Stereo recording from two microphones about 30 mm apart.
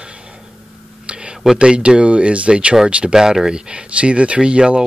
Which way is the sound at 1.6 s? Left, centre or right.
Right.